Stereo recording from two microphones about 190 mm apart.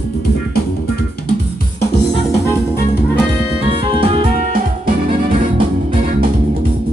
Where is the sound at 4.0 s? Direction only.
30° right (ahead or behind).